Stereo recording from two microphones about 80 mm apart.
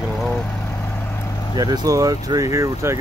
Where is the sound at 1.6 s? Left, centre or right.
Right.